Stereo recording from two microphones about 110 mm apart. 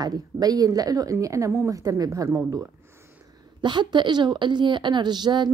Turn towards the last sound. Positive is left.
turn(degrees=-40)  # may be behind; listen again after turning